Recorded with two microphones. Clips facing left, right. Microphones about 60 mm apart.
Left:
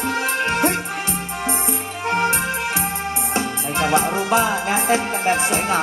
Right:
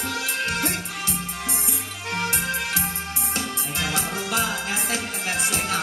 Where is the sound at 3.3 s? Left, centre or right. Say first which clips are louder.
Left 6 dB; left.